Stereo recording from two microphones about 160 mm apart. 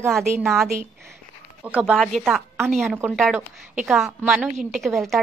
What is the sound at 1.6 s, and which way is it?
A woman's voice, 5° right (ahead or behind).